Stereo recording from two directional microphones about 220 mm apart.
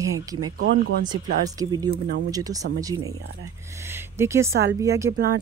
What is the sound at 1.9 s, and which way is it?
Speech, 45° right (ahead or behind).